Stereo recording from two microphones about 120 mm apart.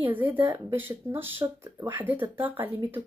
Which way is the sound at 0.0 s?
15° right (ahead or behind).